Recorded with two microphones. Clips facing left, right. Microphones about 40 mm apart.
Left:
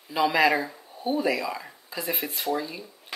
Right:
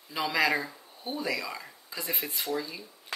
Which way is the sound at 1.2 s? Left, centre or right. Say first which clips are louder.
Left 5 dB; left.